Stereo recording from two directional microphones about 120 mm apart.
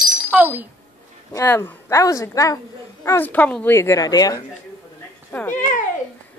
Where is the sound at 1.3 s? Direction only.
20° left (ahead or behind).